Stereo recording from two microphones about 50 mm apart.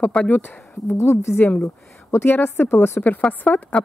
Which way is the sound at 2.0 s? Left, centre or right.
Left.